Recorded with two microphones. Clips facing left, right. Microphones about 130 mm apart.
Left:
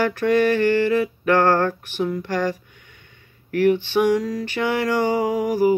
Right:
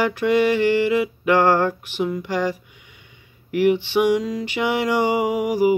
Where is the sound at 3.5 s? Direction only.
15° right (ahead or behind).